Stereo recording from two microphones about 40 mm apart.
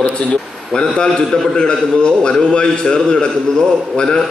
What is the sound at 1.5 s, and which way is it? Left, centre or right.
A man's voice, left.